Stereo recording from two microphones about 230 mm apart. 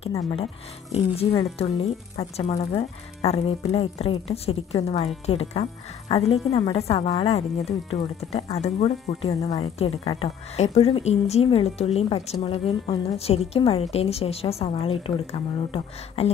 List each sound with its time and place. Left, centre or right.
0.1 s speech: left